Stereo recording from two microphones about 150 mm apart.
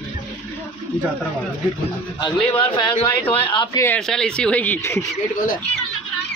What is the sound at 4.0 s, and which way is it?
Speech, 5° left (ahead or behind).